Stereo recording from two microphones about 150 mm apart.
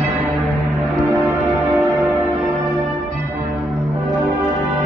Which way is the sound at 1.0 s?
10° right (ahead or behind).